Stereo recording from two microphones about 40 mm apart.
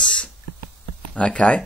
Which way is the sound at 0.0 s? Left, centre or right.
Left.